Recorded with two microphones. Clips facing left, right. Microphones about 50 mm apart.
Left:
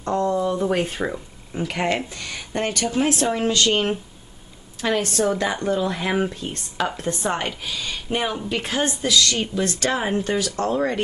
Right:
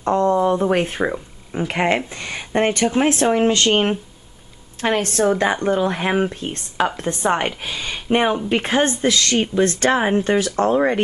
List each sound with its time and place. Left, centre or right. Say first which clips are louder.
0.0 s a woman's voice: right 5 dB; right